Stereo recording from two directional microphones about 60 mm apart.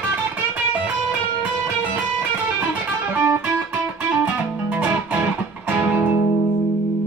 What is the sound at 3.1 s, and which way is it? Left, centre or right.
Music, right.